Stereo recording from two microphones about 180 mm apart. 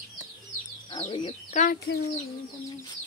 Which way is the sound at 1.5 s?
45° left (ahead or behind).